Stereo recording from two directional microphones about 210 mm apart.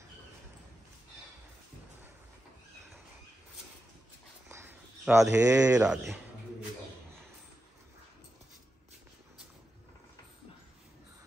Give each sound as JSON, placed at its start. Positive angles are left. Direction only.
{"t": 4.5, "sound": "a sound", "side_deg": -10}
{"t": 5.4, "sound": "speech", "side_deg": -15}
{"t": 5.8, "sound": "speech", "side_deg": -5}